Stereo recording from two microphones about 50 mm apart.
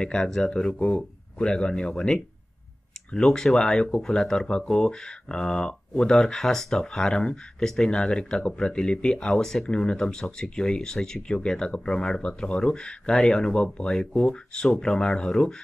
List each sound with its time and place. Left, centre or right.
0.0 s speech: centre